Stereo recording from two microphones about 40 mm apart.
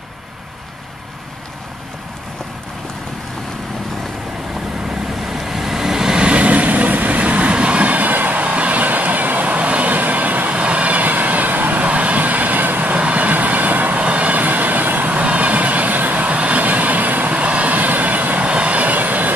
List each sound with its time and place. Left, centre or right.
4.8 s vehicle: centre
6.2 s vehicle: right
10.5 s vehicle: right
17.3 s vehicle: right
18.4 s vehicle: right